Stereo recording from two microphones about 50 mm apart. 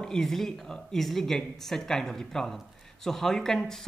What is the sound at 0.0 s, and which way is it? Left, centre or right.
Speech, centre.